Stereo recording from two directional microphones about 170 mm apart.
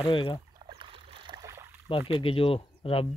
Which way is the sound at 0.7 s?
30° right (ahead or behind).